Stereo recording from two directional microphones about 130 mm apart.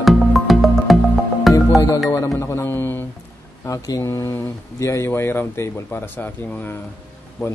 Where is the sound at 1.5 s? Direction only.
25° left (ahead or behind).